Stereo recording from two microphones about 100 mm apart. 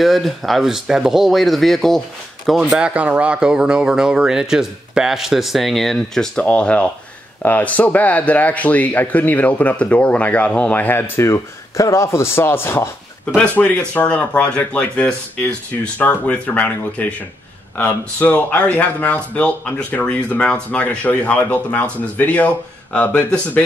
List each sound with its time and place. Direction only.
0.0 s speech: centre (ahead or behind); by 23.6 s 15° left (ahead or behind)